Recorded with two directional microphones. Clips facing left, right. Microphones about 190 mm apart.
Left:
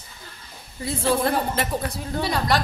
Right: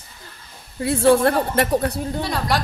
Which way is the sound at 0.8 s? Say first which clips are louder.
Right 7 dB; 70° right (ahead or behind).